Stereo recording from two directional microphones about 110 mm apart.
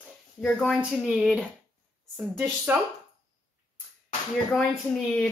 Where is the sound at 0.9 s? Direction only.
Centre (ahead or behind).